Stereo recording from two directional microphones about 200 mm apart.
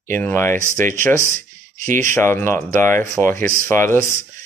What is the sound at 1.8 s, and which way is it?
Speech, 40° right (ahead or behind).